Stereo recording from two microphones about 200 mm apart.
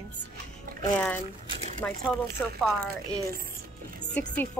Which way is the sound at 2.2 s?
50° right (ahead or behind).